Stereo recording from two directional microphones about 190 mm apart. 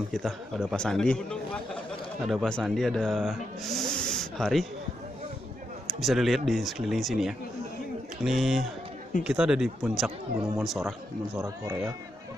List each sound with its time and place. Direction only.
0.1 s a man's voice: centre (ahead or behind)
5.9 s a man's voice: centre (ahead or behind)
11.4 s speech: 15° right (ahead or behind)